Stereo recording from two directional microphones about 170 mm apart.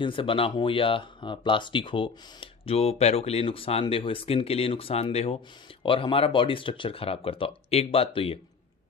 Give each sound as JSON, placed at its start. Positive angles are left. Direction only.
{"t": 0.0, "sound": "speech", "side_deg": 30}